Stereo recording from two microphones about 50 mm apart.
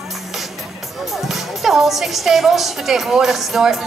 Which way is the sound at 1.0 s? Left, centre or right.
Centre.